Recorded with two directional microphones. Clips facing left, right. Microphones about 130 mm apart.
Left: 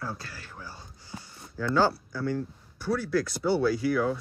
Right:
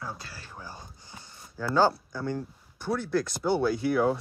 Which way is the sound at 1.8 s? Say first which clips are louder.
Right 2 dB; 15° right (ahead or behind).